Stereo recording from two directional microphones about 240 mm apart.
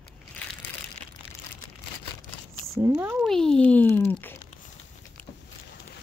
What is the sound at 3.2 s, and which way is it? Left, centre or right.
A child's voice, centre.